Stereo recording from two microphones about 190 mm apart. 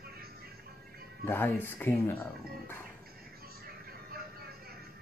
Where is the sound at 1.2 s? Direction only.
10° left (ahead or behind).